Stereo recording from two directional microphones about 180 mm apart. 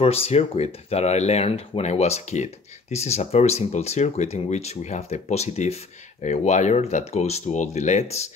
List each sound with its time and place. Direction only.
0.0 s speech: 35° left (ahead or behind)